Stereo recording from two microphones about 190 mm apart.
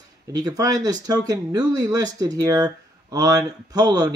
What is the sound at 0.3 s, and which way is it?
Speech, 20° right (ahead or behind).